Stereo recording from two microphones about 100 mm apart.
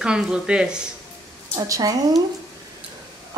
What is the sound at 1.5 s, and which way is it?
Speech, 35° right (ahead or behind).